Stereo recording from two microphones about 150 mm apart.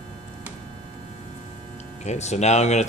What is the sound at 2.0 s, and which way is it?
Speech, 50° left (ahead or behind).